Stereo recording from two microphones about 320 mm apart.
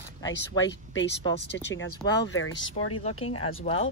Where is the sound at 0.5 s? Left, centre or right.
Left.